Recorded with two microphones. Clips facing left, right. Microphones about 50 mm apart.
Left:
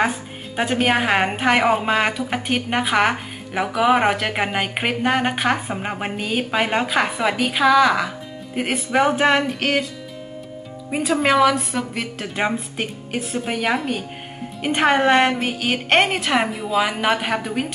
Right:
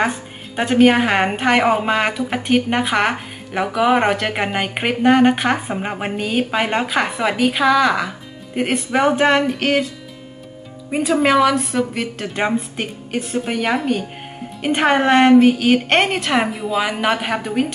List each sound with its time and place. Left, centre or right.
0.0 s a woman's voice: centre
10.9 s a woman's voice: centre